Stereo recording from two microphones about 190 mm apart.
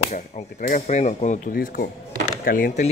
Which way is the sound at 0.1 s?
45° left (ahead or behind).